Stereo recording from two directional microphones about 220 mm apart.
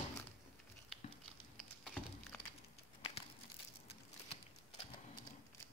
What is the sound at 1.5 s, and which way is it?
Wood, centre (ahead or behind).